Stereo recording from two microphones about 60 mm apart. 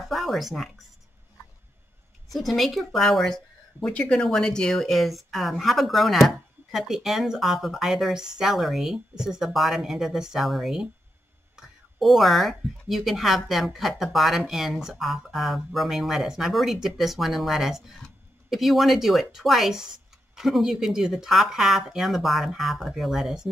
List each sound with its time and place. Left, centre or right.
0.1 s a woman's voice: centre
2.2 s speech: centre
3.9 s a woman's voice: centre